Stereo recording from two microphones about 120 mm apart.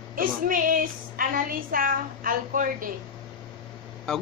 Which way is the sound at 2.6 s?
90° right.